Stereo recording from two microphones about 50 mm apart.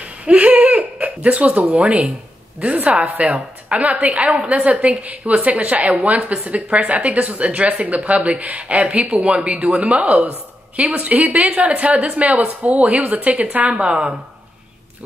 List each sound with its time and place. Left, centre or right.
0.2 s laughter: right
1.0 s a woman's voice: right
13.7 s a woman's voice: centre